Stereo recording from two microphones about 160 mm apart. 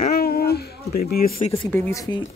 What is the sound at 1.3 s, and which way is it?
Speech, 35° left (ahead or behind).